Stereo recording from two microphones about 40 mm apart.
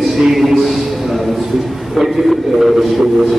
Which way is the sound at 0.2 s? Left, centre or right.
Centre.